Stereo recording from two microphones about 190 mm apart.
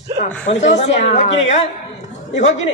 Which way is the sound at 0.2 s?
40° left (ahead or behind).